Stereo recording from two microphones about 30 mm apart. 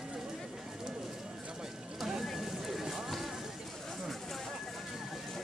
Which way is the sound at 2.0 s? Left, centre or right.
Centre.